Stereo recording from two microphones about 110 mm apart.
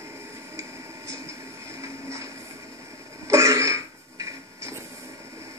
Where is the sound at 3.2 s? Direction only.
25° right (ahead or behind).